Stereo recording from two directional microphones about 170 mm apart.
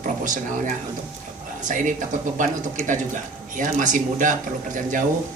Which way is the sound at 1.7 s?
50° right (ahead or behind).